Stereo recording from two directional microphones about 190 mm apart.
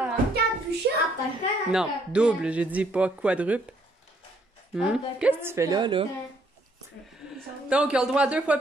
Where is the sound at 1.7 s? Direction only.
5° right (ahead or behind).